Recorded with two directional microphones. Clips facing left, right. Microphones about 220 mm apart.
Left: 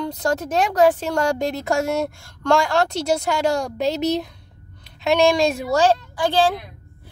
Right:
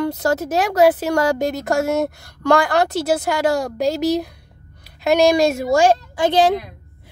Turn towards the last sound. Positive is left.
turn(degrees=-20)  # may be behind; listen again after turning